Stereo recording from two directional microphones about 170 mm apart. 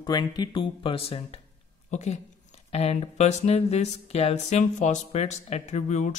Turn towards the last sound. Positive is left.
turn(degrees=45)  # may be behind; listen again after turning